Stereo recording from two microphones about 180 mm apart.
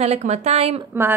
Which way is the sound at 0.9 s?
10° right (ahead or behind).